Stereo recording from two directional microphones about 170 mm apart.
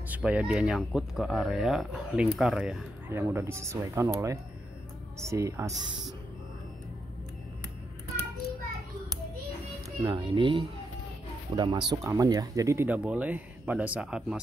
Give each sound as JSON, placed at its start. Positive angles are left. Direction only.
{"t": 0.1, "sound": "speech", "side_deg": -5}
{"t": 3.1, "sound": "speech", "side_deg": -15}
{"t": 10.0, "sound": "speech", "side_deg": -30}